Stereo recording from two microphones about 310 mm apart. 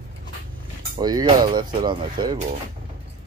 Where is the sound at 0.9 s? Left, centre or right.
Centre.